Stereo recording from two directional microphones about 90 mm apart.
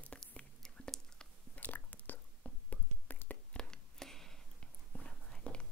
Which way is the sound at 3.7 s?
5° left (ahead or behind).